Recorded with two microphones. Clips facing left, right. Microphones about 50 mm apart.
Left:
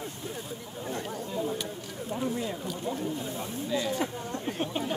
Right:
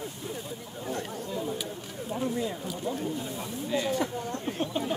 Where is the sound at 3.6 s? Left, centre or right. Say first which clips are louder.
Right 1 dB; centre.